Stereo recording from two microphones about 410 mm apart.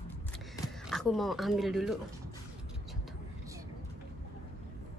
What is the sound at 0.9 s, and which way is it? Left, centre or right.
Speech, centre.